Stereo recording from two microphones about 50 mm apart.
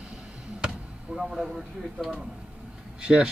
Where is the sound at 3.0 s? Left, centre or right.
Centre.